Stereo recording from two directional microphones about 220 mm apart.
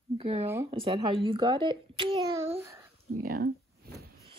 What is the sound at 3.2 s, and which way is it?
Speech, 45° right (ahead or behind).